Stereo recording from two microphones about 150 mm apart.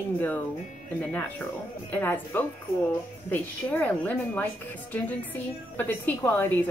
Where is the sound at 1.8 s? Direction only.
10° left (ahead or behind).